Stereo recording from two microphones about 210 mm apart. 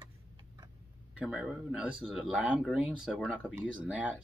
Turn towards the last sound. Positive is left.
turn(degrees=-5)  # may be behind; listen again after turning